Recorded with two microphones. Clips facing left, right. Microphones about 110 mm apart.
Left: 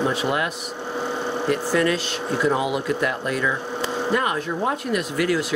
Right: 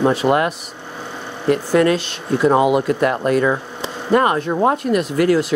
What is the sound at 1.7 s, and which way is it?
Speech, 50° right (ahead or behind).